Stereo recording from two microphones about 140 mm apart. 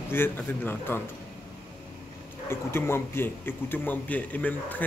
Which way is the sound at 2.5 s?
15° left (ahead or behind).